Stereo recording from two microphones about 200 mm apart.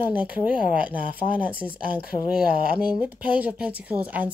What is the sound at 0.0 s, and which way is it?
Speech, 10° right (ahead or behind).